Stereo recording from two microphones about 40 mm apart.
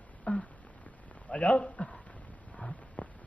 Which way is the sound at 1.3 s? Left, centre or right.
Left.